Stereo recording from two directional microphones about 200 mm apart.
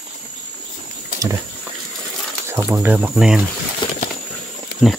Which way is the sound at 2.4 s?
15° right (ahead or behind).